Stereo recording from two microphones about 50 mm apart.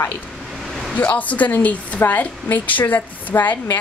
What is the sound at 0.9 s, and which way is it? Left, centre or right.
Speech, left.